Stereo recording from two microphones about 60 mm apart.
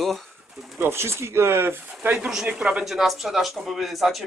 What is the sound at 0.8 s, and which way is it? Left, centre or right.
Speech, right.